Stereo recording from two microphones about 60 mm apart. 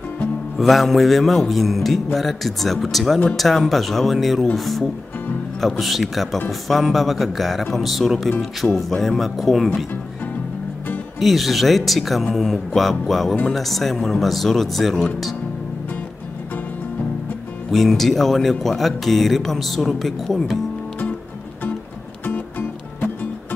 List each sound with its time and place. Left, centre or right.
0.6 s speech: centre
11.1 s speech: centre
17.6 s speech: centre
22.2 s music: left